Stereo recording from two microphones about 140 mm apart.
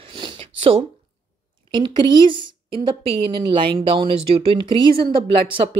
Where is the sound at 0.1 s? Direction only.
35° right (ahead or behind).